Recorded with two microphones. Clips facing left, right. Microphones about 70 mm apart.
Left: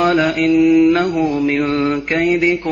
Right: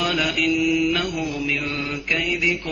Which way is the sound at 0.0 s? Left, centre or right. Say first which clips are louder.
Left 8 dB; left.